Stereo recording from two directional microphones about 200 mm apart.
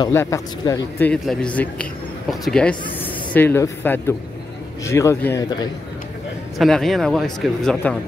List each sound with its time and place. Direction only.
0.0 s a man's voice: 15° left (ahead or behind)
6.6 s speech: centre (ahead or behind)